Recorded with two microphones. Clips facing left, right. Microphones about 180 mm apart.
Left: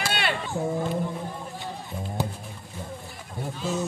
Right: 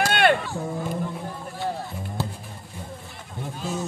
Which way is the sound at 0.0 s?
55° right (ahead or behind).